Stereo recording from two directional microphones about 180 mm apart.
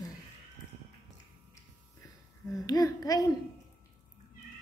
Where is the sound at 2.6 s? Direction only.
20° left (ahead or behind).